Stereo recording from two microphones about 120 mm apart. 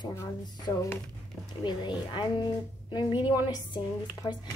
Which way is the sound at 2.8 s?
40° left (ahead or behind).